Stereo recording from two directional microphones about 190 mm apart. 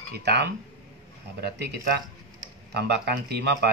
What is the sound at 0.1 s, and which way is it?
Speech, 60° right (ahead or behind).